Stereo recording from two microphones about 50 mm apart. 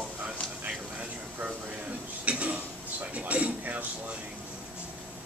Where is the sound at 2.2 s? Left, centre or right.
Right.